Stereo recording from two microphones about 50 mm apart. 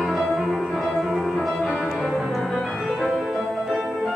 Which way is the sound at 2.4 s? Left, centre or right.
Centre.